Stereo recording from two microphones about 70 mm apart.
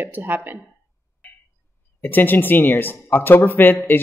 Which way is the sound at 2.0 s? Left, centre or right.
Left.